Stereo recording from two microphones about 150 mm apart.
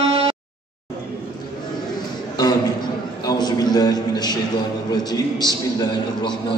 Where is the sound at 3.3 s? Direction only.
25° left (ahead or behind).